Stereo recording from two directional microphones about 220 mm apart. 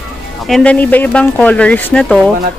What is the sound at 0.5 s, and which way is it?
A woman's voice, 5° left (ahead or behind).